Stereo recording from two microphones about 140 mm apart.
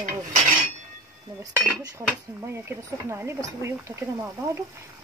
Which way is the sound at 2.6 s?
20° right (ahead or behind).